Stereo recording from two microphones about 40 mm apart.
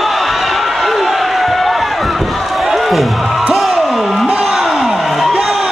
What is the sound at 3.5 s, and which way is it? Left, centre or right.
Music, centre.